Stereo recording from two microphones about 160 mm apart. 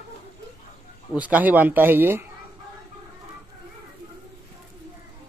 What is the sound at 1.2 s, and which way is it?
Speech, 10° right (ahead or behind).